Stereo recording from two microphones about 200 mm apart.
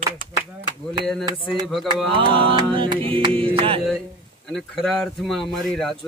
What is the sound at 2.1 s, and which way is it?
Music, 25° right (ahead or behind).